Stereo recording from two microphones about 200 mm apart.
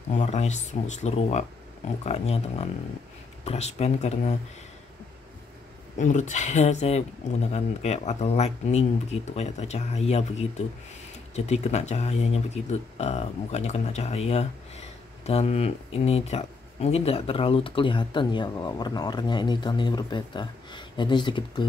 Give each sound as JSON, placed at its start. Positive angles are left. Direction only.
{"t": 0.1, "sound": "speech", "side_deg": 35}
{"t": 5.9, "sound": "speech", "side_deg": 35}